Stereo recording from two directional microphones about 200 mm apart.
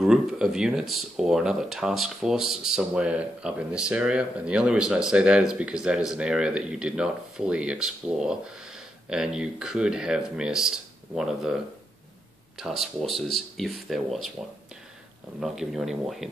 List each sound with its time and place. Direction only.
0.0 s speech: 5° right (ahead or behind)
15.4 s speech: centre (ahead or behind)